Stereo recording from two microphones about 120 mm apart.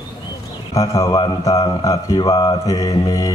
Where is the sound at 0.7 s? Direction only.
30° left (ahead or behind).